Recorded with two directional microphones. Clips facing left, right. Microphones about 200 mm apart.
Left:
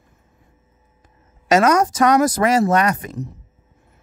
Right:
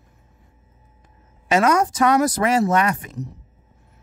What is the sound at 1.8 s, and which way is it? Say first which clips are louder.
Speech: left 2 dB; 45° left (ahead or behind).